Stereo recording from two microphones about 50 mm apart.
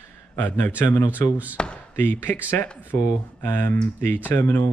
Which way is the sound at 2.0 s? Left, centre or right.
Left.